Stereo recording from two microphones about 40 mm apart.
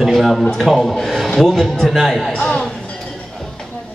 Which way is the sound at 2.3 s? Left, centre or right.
Centre.